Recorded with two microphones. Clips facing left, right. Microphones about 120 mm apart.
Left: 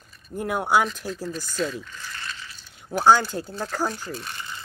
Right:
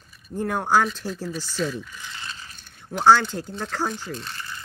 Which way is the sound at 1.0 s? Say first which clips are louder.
Right 1 dB; 5° right (ahead or behind).